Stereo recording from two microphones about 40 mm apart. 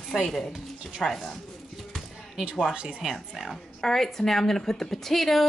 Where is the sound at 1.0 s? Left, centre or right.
Centre.